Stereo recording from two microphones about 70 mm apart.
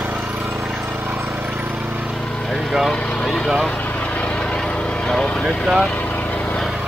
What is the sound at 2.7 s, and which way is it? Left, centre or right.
Speech, centre.